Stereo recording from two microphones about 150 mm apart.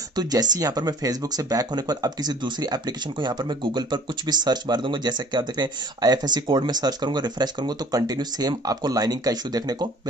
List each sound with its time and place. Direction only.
0.1 s speech: 25° right (ahead or behind)